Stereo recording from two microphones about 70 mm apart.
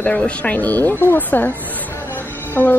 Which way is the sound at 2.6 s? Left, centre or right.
Right.